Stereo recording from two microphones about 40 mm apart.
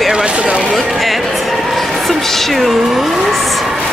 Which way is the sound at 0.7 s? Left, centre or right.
Centre.